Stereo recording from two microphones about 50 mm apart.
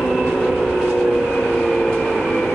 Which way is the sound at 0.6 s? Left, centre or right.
Centre.